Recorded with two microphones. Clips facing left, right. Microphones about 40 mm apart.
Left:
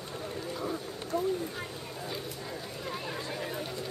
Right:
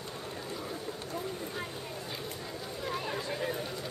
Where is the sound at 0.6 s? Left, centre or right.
Centre.